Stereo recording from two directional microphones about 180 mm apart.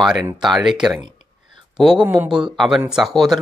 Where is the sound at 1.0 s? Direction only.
25° right (ahead or behind).